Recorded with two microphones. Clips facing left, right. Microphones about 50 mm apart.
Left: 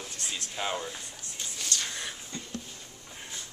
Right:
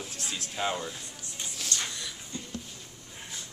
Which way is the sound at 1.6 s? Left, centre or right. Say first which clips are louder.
Even; centre.